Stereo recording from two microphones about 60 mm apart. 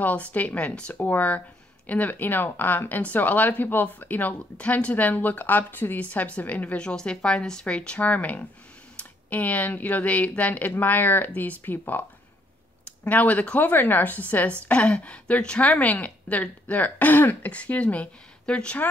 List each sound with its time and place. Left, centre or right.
0.0 s speech: left
6.8 s speech: centre; by 17.5 s left
17.5 s speech: left